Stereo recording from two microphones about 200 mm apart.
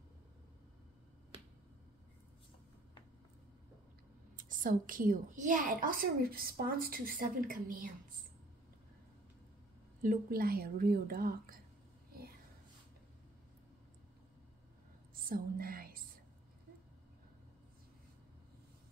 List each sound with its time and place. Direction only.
4.4 s a woman's voice: 40° right (ahead or behind)
10.0 s a woman's voice: 50° right (ahead or behind)
15.2 s a woman's voice: 45° right (ahead or behind)